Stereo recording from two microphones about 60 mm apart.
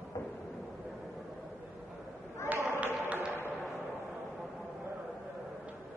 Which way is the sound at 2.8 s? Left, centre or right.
Right.